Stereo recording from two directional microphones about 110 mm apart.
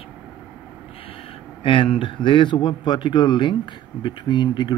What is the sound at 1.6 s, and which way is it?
A man's voice, 50° left (ahead or behind).